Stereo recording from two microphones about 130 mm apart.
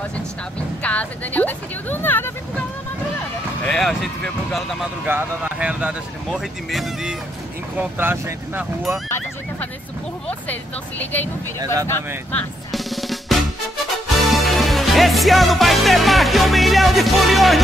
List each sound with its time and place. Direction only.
0.8 s speech: 10° left (ahead or behind)
3.6 s speech: 5° left (ahead or behind)
5.0 s speech: 15° right (ahead or behind)
7.7 s speech: 15° right (ahead or behind)
10.5 s speech: 15° left (ahead or behind)
12.7 s drum: centre (ahead or behind)
14.0 s music: centre (ahead or behind)